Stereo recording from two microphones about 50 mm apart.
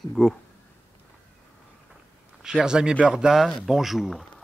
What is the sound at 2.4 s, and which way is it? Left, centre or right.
Speech, centre.